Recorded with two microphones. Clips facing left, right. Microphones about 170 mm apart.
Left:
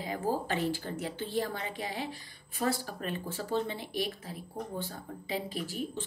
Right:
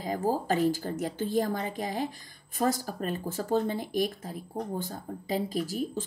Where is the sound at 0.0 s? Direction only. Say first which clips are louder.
Right 3 dB; 40° right (ahead or behind).